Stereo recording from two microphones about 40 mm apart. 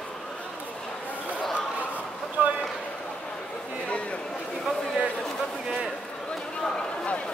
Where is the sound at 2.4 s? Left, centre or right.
Right.